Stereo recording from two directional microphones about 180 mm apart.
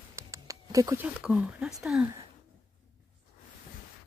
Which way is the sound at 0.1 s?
20° right (ahead or behind).